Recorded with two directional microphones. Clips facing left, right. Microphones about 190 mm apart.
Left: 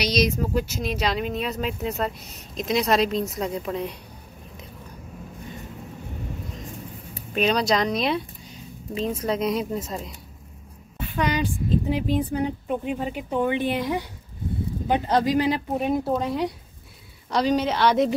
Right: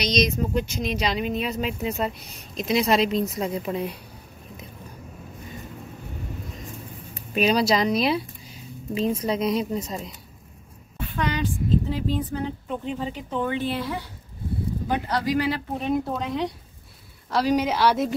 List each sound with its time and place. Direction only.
0.0 s a woman's voice: 5° left (ahead or behind)
7.3 s speech: 5° right (ahead or behind)
11.1 s speech: 15° left (ahead or behind)
16.0 s a woman's voice: 5° left (ahead or behind)